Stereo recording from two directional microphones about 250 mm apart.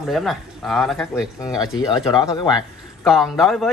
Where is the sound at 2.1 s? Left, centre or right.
Centre.